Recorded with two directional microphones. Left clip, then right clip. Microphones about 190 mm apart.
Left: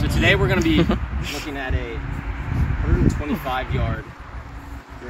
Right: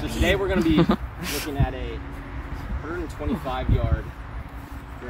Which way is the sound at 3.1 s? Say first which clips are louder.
Left 12 dB; 55° left (ahead or behind).